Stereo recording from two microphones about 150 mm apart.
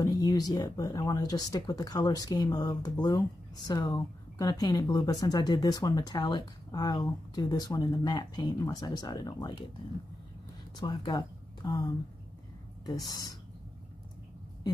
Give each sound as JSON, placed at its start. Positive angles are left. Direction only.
{"t": 0.0, "sound": "speech", "side_deg": 25}
{"t": 10.8, "sound": "speech", "side_deg": 30}